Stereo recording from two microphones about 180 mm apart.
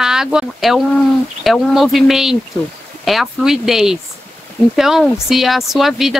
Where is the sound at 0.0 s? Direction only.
5° right (ahead or behind).